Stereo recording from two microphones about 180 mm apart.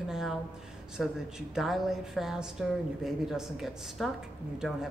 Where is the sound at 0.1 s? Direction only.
Centre (ahead or behind).